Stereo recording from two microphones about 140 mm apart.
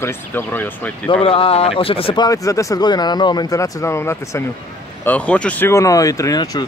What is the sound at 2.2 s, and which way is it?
Speech, 25° left (ahead or behind).